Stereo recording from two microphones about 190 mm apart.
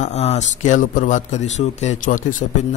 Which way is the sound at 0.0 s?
35° left (ahead or behind).